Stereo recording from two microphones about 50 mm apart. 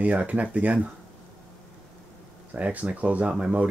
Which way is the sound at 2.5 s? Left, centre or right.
Right.